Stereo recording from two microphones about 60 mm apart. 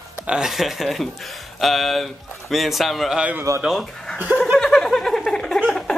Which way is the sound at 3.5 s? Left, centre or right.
Right.